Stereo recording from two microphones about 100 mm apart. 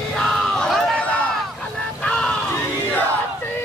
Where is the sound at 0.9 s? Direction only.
15° left (ahead or behind).